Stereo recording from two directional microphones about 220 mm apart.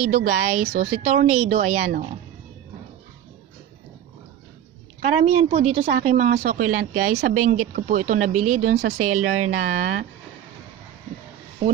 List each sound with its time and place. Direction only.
0.0 s speech: 35° right (ahead or behind)
5.0 s speech: 30° right (ahead or behind)